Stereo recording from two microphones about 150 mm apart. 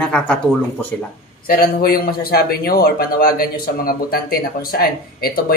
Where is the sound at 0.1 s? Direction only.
5° left (ahead or behind).